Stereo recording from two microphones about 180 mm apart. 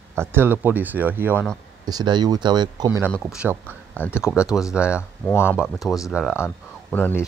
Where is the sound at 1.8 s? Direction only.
20° right (ahead or behind).